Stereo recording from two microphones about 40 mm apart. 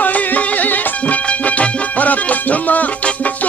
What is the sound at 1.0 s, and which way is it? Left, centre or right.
Music, left.